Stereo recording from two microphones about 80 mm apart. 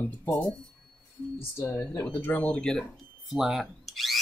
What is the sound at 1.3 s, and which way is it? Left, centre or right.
Speech, left.